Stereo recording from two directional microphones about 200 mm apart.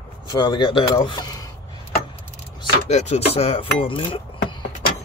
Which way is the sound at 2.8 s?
35° left (ahead or behind).